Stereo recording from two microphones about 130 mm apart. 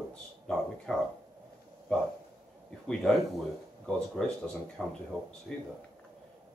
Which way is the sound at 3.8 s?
5° left (ahead or behind).